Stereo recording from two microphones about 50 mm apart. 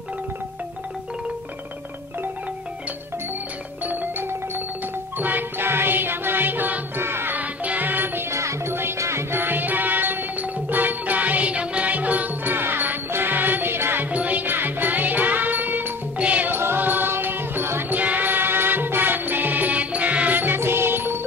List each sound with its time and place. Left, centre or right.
3.8 s music: right
5.2 s music: right
7.0 s music: right
7.3 s music: right
8.3 s music: right
9.3 s music: right
14.1 s music: right
16.2 s music: right
16.4 s music: right
17.9 s music: right